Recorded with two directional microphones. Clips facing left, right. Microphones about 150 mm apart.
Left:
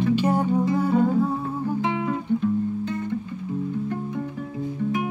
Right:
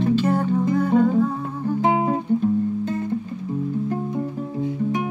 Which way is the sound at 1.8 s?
40° right (ahead or behind).